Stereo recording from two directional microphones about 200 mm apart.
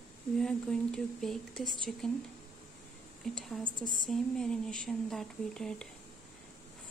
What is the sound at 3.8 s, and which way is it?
Speech, 40° right (ahead or behind).